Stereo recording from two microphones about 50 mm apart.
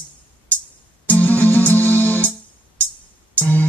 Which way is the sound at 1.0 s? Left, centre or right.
Left.